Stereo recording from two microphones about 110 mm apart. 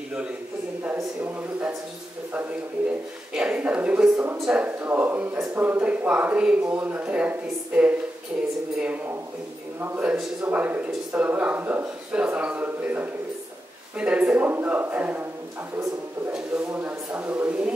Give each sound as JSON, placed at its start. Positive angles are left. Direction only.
{"t": 0.9, "sound": "speech", "side_deg": -15}
{"t": 3.3, "sound": "speech", "side_deg": -10}
{"t": 16.3, "sound": "speech", "side_deg": -10}